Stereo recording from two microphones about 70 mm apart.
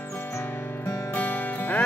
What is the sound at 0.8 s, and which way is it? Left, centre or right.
Music, left.